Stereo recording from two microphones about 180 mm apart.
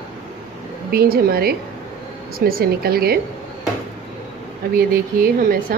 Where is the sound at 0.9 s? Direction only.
55° right (ahead or behind).